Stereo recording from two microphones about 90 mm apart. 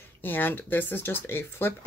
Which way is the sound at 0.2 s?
20° left (ahead or behind).